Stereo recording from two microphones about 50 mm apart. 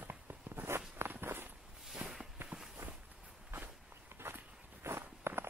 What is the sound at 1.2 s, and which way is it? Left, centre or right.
Walk, right.